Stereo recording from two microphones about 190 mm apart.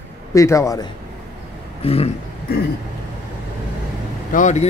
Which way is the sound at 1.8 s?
30° left (ahead or behind).